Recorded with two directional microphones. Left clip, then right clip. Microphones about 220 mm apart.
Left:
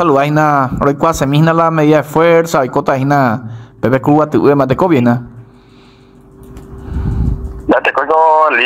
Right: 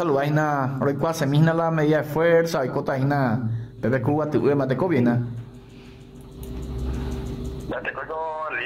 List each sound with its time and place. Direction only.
0.0 s a man's voice: 20° left (ahead or behind)
7.7 s radio: 45° left (ahead or behind)